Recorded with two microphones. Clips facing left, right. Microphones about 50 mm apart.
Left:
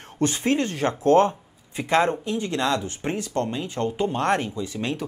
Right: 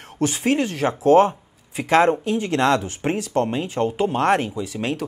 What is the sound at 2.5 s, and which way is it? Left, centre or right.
Speech, right.